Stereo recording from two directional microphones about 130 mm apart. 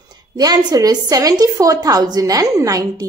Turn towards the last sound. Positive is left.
turn(degrees=-25)  # may be behind; listen again after turning